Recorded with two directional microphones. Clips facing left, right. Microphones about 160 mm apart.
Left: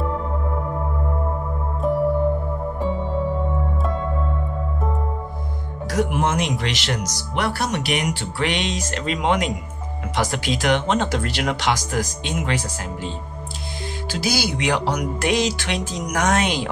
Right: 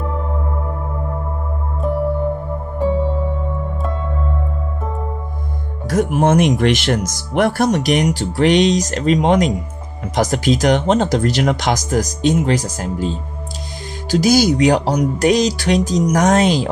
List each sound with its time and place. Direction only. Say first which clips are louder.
1.8 s music: even; centre (ahead or behind)
5.9 s speech: right 6 dB; 45° right (ahead or behind)
14.1 s speech: right 11 dB; 45° right (ahead or behind)